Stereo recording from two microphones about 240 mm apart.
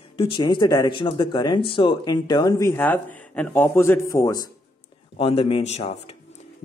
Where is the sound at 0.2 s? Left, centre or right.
Centre.